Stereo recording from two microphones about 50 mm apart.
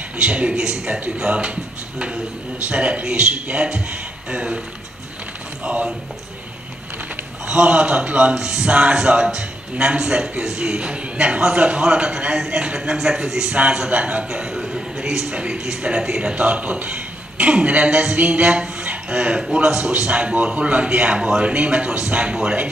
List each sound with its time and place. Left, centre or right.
0.2 s a man's voice: right
5.6 s speech: right
7.4 s a man's voice: right
16.3 s a man's voice: right